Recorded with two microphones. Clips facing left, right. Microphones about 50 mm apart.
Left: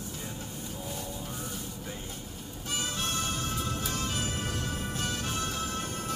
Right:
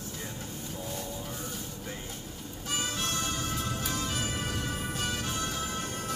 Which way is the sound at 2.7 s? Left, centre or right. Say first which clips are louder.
Even; centre.